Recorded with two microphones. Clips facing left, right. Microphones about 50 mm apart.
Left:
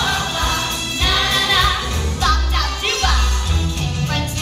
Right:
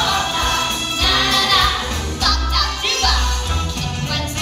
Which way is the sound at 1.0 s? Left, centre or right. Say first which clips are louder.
Right 1 dB; left.